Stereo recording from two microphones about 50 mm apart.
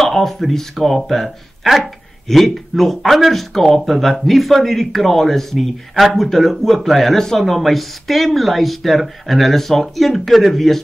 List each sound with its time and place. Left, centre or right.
0.0 s speech: centre